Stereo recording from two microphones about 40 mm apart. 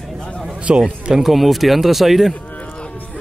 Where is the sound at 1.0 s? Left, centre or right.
Centre.